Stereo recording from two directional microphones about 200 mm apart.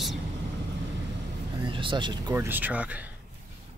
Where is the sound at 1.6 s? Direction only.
25° right (ahead or behind).